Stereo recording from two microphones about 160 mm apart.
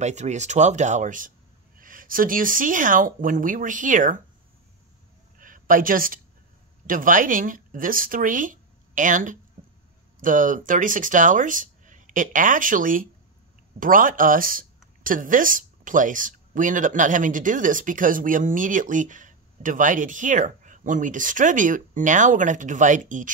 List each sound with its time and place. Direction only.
0.0 s speech: 45° right (ahead or behind)
5.4 s a sound: 60° right (ahead or behind)
6.9 s speech: 55° right (ahead or behind)